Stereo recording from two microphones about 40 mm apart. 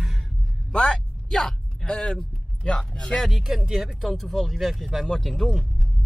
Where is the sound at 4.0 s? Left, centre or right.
Centre.